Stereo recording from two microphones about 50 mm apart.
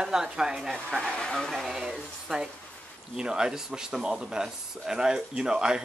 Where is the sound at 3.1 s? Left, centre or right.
Centre.